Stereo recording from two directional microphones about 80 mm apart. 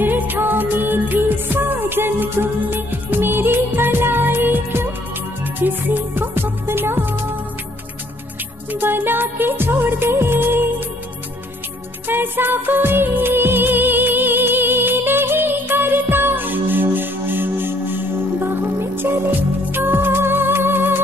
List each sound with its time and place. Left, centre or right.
0.0 s music: right
8.7 s music of bollywood: right
12.1 s music: right